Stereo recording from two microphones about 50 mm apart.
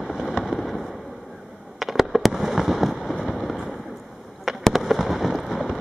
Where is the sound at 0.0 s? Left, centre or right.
Centre.